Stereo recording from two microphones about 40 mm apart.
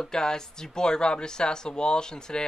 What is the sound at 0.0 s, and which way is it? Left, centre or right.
Speech, centre.